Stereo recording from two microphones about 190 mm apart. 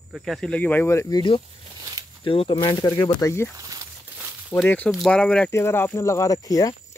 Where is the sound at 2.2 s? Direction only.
30° left (ahead or behind).